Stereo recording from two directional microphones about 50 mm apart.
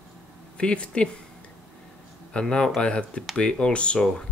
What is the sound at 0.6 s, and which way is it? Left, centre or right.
Speech, left.